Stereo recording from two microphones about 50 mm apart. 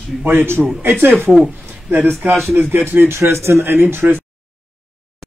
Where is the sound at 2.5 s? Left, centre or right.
Right.